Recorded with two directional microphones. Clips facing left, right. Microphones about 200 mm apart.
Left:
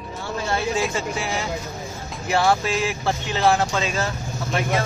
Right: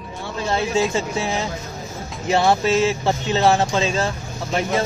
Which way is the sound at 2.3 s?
25° right (ahead or behind).